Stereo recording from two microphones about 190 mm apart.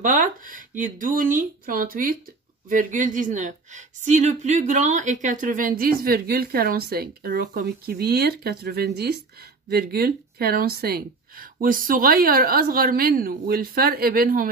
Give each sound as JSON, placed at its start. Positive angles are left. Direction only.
{"t": 0.0, "sound": "a woman's voice", "side_deg": -45}